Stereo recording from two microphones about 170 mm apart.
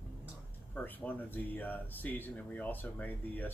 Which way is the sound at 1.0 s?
10° left (ahead or behind).